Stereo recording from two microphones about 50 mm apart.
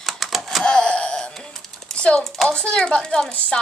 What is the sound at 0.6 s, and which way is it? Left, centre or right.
A child's voice, centre.